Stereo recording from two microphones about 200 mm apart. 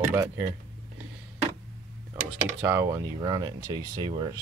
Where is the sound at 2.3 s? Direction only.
15° right (ahead or behind).